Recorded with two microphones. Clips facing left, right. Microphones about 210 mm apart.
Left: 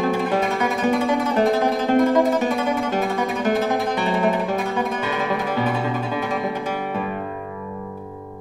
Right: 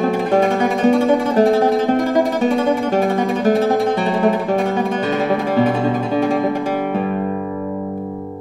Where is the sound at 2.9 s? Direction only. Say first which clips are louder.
Right 6 dB; 30° right (ahead or behind).